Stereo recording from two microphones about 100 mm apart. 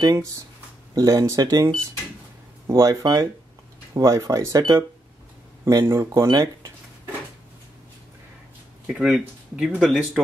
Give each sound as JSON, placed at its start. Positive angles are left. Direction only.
{"t": 0.0, "sound": "speech", "side_deg": -35}
{"t": 8.8, "sound": "speech", "side_deg": -10}